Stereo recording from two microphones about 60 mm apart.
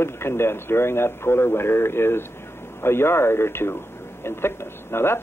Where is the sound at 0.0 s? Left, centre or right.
Left.